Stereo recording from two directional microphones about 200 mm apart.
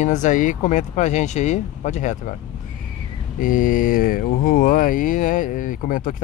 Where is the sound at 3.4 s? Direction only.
40° left (ahead or behind).